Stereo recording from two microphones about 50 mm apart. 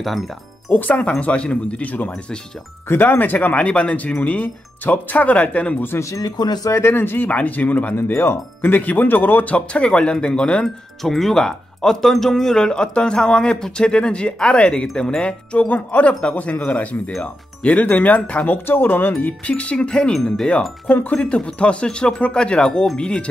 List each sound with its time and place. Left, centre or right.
0.7 s speech: left
2.9 s speech: left
5.9 s speech: left
6.7 s speech: left
7.2 s speech: left
7.9 s speech: left
8.7 s speech: left; by 10.7 s centre
11.0 s speech: centre; by 18.6 s left
18.7 s speech: left
19.4 s speech: left
20.8 s speech: left